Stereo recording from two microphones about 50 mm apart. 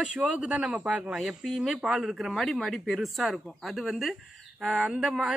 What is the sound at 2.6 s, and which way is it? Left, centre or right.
Speech, centre.